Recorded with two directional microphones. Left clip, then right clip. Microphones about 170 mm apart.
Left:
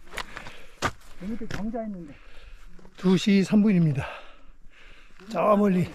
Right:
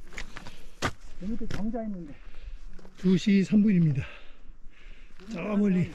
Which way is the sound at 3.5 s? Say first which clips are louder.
Left 2 dB; 30° left (ahead or behind).